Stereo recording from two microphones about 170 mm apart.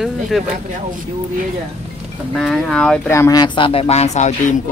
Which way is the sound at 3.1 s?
20° left (ahead or behind).